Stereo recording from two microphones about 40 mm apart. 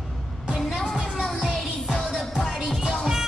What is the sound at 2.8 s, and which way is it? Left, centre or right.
Music, centre.